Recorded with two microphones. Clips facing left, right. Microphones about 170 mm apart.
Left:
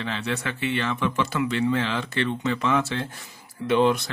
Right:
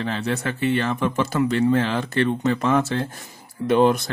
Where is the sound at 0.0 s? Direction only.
40° right (ahead or behind).